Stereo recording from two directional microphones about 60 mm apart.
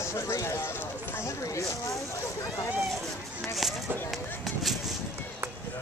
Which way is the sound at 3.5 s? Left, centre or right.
Centre.